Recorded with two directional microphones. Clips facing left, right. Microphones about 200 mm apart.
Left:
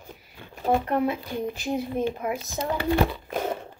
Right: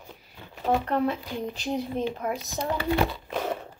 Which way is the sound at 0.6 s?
10° left (ahead or behind).